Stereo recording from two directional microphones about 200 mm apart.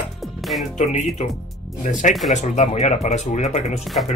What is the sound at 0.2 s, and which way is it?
Music, centre (ahead or behind).